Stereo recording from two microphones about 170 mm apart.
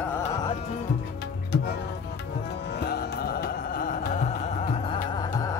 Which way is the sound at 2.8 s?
70° left (ahead or behind).